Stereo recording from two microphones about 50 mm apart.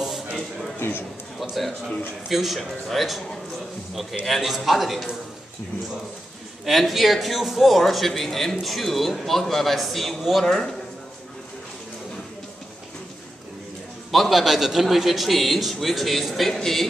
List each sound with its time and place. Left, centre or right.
0.0 s a sound: centre
0.7 s a man's voice: left
1.4 s a man's voice: centre
6.6 s a man's voice: centre
14.1 s a man's voice: centre